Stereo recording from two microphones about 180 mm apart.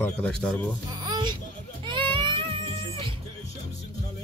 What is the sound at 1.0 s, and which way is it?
Music, 25° right (ahead or behind).